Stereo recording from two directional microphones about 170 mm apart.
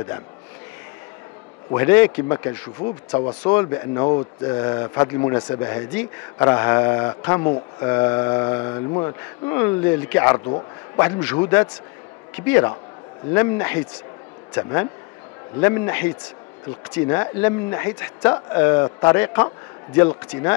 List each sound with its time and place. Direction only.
1.7 s speech: 15° left (ahead or behind)
2.8 s speech: 30° left (ahead or behind); by 20.5 s 15° left (ahead or behind)